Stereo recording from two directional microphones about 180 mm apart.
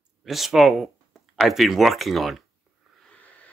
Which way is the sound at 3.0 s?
10° left (ahead or behind).